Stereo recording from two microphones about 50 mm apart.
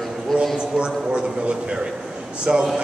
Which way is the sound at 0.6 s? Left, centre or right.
Centre.